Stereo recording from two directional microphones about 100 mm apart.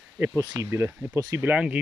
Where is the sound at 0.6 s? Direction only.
25° right (ahead or behind).